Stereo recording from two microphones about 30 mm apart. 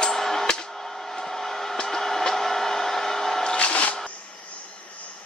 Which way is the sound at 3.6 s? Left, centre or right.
Left.